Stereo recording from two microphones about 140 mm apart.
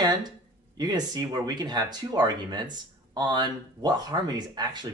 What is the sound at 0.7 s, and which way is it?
Speech, 30° right (ahead or behind).